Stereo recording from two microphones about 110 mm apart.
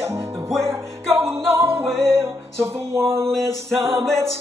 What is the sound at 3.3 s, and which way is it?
Music, 5° left (ahead or behind).